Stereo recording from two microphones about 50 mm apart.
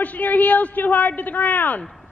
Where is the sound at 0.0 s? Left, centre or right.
Left.